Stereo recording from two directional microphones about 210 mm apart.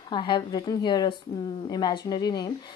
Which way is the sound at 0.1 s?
20° left (ahead or behind).